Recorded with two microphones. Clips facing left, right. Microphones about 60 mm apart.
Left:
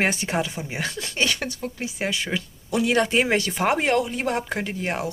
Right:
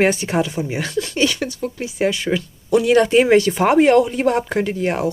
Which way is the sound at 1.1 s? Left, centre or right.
Left.